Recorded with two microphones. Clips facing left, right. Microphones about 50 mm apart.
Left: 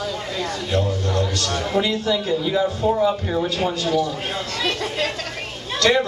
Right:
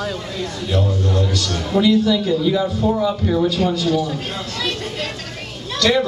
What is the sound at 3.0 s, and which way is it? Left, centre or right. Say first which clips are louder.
Speech: right 2 dB; centre.